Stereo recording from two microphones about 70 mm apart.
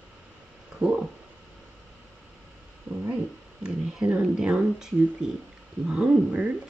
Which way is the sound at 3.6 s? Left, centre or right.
Centre.